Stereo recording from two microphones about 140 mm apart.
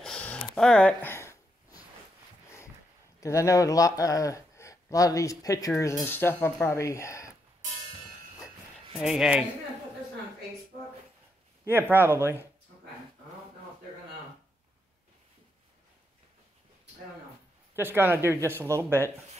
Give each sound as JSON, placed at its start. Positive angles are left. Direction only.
{"t": 0.0, "sound": "a sound", "side_deg": 5}
{"t": 3.2, "sound": "speech", "side_deg": 20}
{"t": 8.9, "sound": "speech", "side_deg": -5}
{"t": 11.7, "sound": "speech", "side_deg": -15}
{"t": 17.7, "sound": "speech", "side_deg": -15}